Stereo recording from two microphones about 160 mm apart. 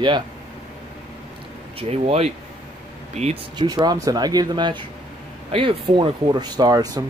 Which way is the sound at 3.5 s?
25° right (ahead or behind).